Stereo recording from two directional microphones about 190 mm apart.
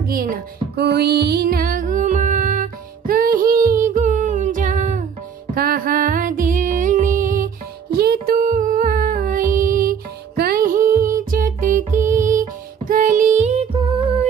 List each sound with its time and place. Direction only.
0.0 s music: 50° right (ahead or behind)
3.8 s humming: 45° right (ahead or behind)
5.5 s music: 50° right (ahead or behind); by 14.0 s 25° right (ahead or behind)